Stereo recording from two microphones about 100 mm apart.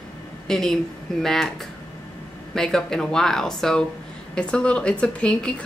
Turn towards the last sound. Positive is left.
turn(degrees=10)  # may be behind; listen again after turning